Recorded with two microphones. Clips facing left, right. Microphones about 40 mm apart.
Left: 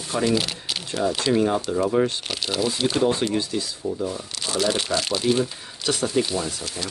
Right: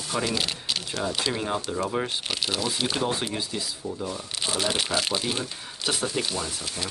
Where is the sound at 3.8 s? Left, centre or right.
Centre.